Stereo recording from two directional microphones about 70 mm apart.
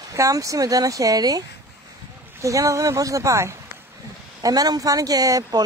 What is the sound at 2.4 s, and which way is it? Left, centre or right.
Speech, right.